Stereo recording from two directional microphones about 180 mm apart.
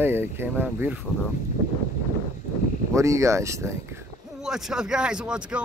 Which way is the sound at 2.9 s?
15° right (ahead or behind).